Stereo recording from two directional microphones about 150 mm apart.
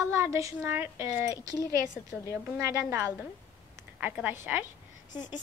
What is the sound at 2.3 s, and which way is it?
A woman's voice, 20° right (ahead or behind).